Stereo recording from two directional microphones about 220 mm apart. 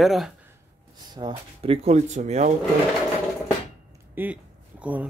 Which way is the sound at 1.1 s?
20° right (ahead or behind).